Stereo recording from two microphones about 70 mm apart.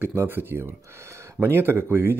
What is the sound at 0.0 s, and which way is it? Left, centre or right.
Speech, right.